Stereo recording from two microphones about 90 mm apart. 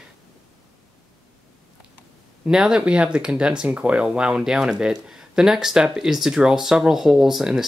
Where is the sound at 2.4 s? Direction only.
5° right (ahead or behind).